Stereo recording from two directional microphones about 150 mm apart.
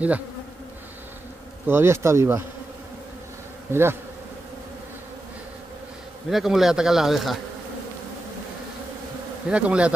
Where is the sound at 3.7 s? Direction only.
15° right (ahead or behind).